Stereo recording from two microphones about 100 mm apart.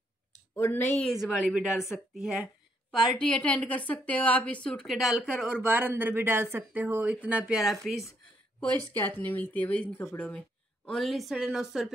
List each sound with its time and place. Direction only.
0.6 s speech: 25° left (ahead or behind)
1.1 s a woman's voice: 5° right (ahead or behind)
3.2 s a woman's voice: 10° left (ahead or behind)
4.8 s a woman's voice: centre (ahead or behind)
5.6 s speech: 20° right (ahead or behind)
7.5 s a woman's voice: centre (ahead or behind)
8.9 s a woman's voice: 20° left (ahead or behind)
10.9 s a woman's voice: centre (ahead or behind)